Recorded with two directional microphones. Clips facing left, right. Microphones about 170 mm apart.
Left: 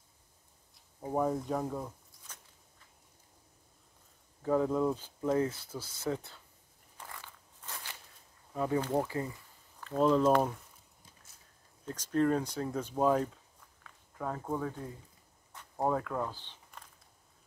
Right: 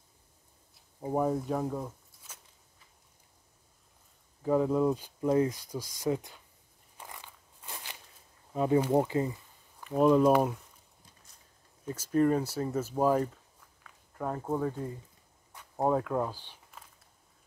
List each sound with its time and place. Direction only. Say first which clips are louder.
1.0 s speech: right 2 dB; 10° right (ahead or behind)
4.4 s speech: right 3 dB; 10° right (ahead or behind)
7.0 s walk: right 1 dB; 15° right (ahead or behind)
8.5 s speech: right 5 dB; 20° right (ahead or behind)
11.8 s speech: right 3 dB; 10° right (ahead or behind)
15.5 s a sound: right 3 dB; 15° right (ahead or behind)